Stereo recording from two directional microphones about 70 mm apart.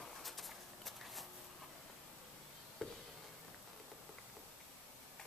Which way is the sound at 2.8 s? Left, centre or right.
Centre.